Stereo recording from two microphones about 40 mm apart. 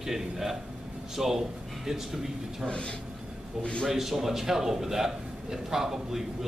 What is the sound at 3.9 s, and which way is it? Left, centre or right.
A man's voice, centre.